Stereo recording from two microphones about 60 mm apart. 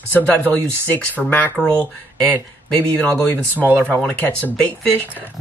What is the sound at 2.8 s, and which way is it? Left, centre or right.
Speech, left.